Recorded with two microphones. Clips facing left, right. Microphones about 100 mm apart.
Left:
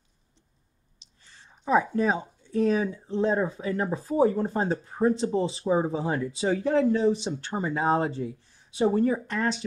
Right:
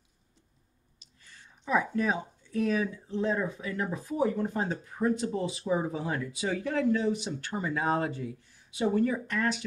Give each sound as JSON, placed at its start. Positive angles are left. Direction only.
{"t": 0.9, "sound": "whispering", "side_deg": 25}
{"t": 1.6, "sound": "speech", "side_deg": 30}